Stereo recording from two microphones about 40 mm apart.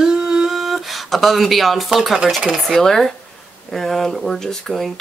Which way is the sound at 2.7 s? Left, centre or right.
Centre.